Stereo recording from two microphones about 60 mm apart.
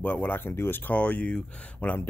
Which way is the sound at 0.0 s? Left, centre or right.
Left.